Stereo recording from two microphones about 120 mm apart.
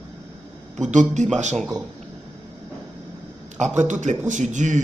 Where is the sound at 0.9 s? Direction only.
85° right.